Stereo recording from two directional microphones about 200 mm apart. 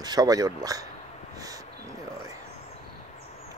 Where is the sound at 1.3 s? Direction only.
20° right (ahead or behind).